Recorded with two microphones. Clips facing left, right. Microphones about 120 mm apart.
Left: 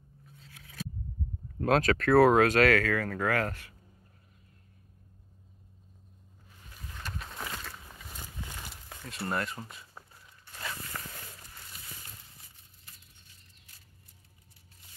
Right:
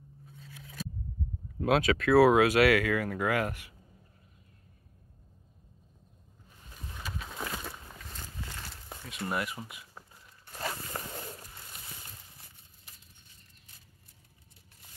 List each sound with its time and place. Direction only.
1.6 s speech: 5° right (ahead or behind)
7.0 s a sound: centre (ahead or behind)
7.5 s walk: 15° right (ahead or behind)
8.0 s walk: 10° left (ahead or behind)
9.3 s speech: 10° right (ahead or behind)
10.5 s zipper: 35° right (ahead or behind)